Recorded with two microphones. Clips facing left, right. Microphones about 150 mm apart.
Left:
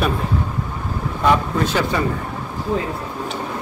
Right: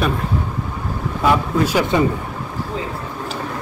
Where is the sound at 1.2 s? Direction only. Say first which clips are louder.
Right 1 dB; 5° right (ahead or behind).